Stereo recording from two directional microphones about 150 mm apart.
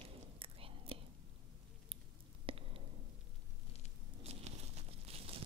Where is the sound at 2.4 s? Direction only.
40° right (ahead or behind).